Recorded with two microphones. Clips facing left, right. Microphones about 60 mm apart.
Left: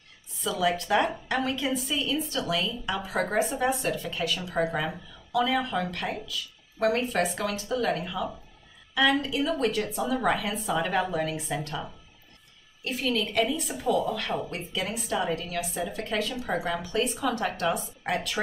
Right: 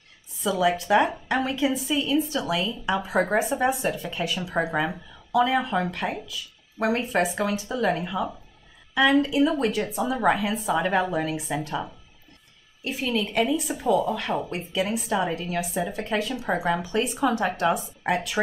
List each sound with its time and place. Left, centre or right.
0.4 s a woman's voice: centre